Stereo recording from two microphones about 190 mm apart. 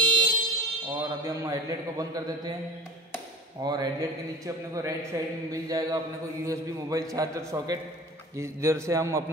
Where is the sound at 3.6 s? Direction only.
20° right (ahead or behind).